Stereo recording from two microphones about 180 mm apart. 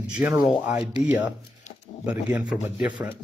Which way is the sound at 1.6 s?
40° left (ahead or behind).